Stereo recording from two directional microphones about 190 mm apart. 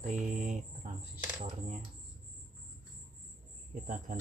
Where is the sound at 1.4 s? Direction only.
35° right (ahead or behind).